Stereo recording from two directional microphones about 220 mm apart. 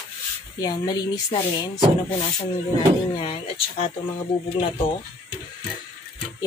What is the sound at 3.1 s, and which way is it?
Speech, 25° left (ahead or behind).